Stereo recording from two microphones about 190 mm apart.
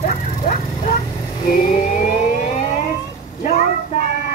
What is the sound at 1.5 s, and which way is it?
Vehicle, 50° left (ahead or behind).